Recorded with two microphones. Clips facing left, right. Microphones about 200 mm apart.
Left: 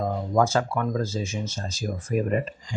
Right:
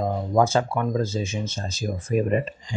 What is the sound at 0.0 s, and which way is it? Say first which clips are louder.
Speech: right 2 dB; 20° right (ahead or behind).